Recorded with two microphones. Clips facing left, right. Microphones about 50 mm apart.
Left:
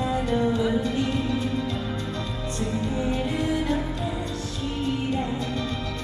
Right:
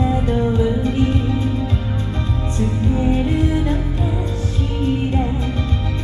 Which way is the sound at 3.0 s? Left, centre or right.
Right.